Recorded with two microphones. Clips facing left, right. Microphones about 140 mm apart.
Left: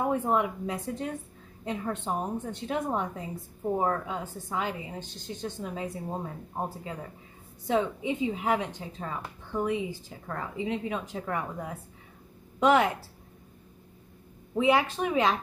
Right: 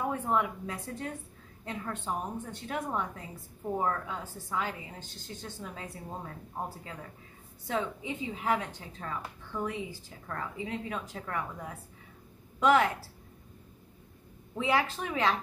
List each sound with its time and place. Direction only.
0.0 s a woman's voice: 20° left (ahead or behind)
12.5 s speech: 20° left (ahead or behind)
14.5 s a woman's voice: 20° left (ahead or behind)